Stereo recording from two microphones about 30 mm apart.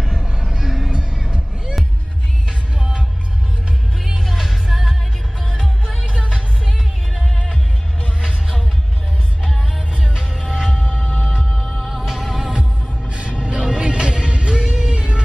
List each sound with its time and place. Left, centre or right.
0.2 s music: right
2.8 s music: right
4.0 s music: centre
6.2 s music: right
8.2 s music: right
10.1 s music: right
11.6 s music: centre
13.1 s music: right
14.9 s vehicle: right